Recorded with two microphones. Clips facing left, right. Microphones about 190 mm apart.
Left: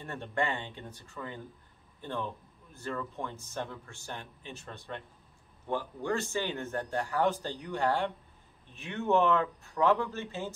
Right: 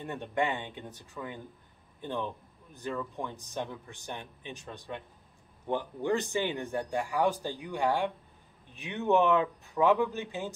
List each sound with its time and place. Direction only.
0.0 s speech: 15° right (ahead or behind)